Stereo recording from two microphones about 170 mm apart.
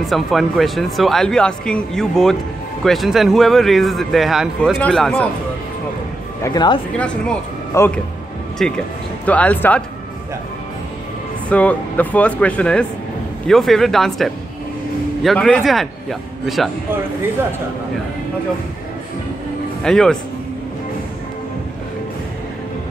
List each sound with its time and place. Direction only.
0.0 s speech: centre (ahead or behind)
6.4 s speech: 25° left (ahead or behind)
7.0 s speech: 10° left (ahead or behind)
11.4 s speech: 10° left (ahead or behind)
19.8 s speech: 5° left (ahead or behind)